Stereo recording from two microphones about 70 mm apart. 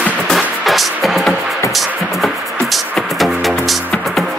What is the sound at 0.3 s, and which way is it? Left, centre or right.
Music, centre.